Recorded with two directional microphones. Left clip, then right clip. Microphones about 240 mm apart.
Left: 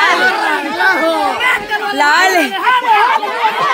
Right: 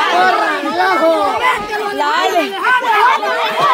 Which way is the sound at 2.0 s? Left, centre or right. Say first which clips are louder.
Left 4 dB; left.